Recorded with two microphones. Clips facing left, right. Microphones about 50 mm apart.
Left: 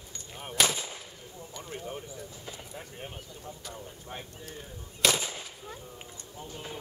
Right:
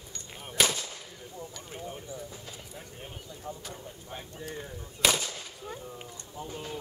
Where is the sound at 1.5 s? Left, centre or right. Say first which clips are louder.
Left 6 dB; centre.